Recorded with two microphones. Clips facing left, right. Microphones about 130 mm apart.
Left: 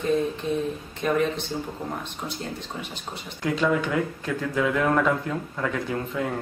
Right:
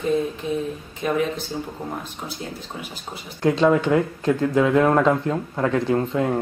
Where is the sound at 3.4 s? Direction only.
30° right (ahead or behind).